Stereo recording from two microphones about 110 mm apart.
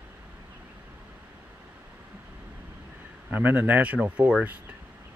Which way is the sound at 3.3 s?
15° right (ahead or behind).